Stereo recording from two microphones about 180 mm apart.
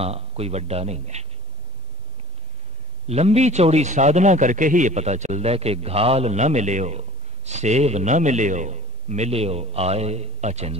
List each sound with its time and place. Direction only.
0.0 s a man's voice: 35° right (ahead or behind)
3.1 s a man's voice: 35° right (ahead or behind)